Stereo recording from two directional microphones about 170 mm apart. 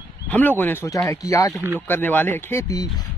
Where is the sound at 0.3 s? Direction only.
10° left (ahead or behind).